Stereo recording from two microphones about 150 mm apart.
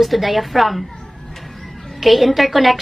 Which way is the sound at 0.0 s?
Centre (ahead or behind).